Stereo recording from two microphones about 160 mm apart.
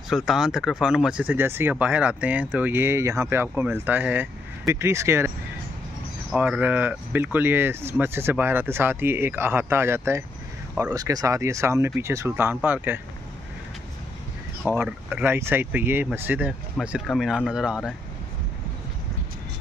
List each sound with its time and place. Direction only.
0.1 s speech: centre (ahead or behind)
6.3 s speech: 10° right (ahead or behind)
14.7 s speech: 10° right (ahead or behind)